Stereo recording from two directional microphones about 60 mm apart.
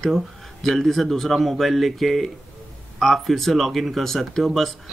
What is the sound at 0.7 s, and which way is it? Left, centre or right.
Speech, centre.